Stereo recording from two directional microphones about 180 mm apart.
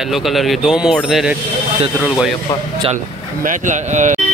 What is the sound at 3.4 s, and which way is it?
Speech, 45° right (ahead or behind).